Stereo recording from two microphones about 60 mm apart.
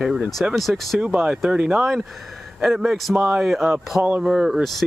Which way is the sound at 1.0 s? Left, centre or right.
Right.